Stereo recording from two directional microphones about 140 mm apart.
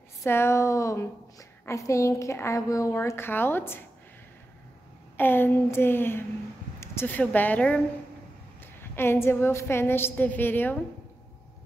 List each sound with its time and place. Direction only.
0.2 s a woman's voice: 20° left (ahead or behind)
5.1 s a woman's voice: 15° left (ahead or behind)
8.9 s a woman's voice: 15° left (ahead or behind)